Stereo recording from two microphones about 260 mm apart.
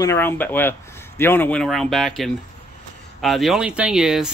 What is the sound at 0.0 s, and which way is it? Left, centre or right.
Speech, centre.